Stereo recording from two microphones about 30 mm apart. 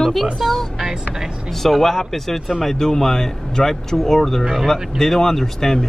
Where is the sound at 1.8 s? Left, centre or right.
Centre.